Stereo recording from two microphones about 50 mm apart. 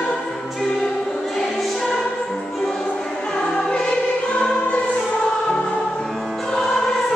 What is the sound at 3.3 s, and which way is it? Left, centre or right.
Music, centre.